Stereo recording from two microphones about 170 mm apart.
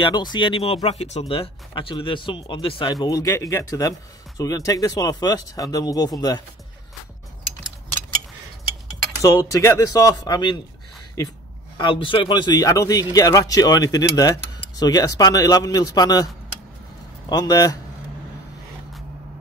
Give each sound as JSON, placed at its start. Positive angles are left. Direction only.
{"t": 0.0, "sound": "a man's voice", "side_deg": 25}
{"t": 9.2, "sound": "a man's voice", "side_deg": 20}
{"t": 11.7, "sound": "a man's voice", "side_deg": 30}
{"t": 17.3, "sound": "a man's voice", "side_deg": 20}